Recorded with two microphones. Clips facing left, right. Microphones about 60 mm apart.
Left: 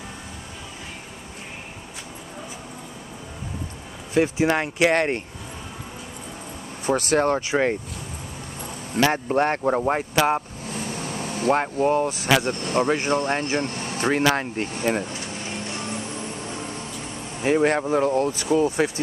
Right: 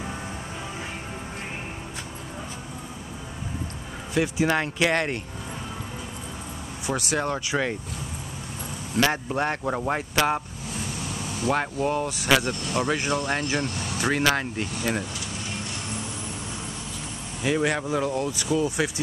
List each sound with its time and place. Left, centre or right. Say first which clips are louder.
4.1 s speech: left 3 dB; left
6.9 s speech: left 6 dB; left
7.3 s speech: left 5 dB; left
9.1 s speech: left 5 dB; left
9.7 s speech: left 5 dB; centre
11.0 s air conditioning: left 3 dB; left
11.6 s speech: left 5 dB; centre; by 14.2 s left
14.3 s a sound: left 2 dB; left
17.4 s speech: left 4 dB; left